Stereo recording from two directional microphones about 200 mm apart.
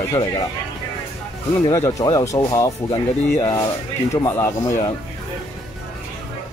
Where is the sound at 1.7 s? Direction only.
15° left (ahead or behind).